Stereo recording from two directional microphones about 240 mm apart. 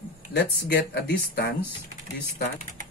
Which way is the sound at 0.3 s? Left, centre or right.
Left.